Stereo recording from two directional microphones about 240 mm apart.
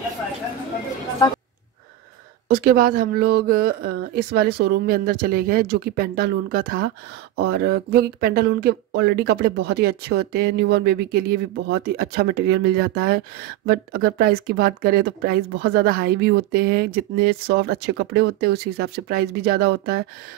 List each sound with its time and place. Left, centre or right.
1.2 s speech: centre
2.4 s speech: right